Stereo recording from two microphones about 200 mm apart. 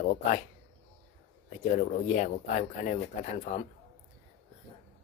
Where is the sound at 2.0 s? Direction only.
40° left (ahead or behind).